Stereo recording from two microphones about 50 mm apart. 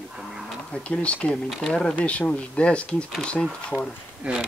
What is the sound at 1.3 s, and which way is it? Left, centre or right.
Speech, centre.